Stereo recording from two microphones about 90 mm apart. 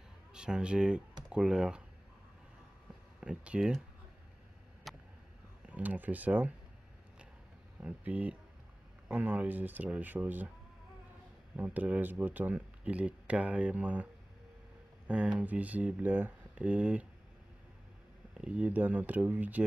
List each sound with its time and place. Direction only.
0.3 s speech: 10° right (ahead or behind)
3.2 s speech: 10° right (ahead or behind)
4.9 s vehicle: centre (ahead or behind)
5.7 s speech: 20° right (ahead or behind)
7.8 s speech: 15° right (ahead or behind)
11.5 s speech: 20° right (ahead or behind)
15.0 s speech: 10° right (ahead or behind)
18.3 s speech: 15° right (ahead or behind)